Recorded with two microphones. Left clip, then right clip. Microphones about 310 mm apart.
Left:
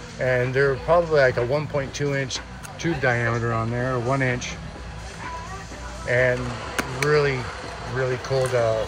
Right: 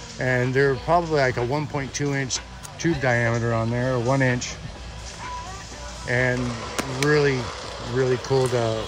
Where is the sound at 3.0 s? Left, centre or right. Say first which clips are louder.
Left 1 dB; right.